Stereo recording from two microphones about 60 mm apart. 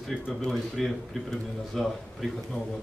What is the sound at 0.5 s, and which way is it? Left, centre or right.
Speech, centre.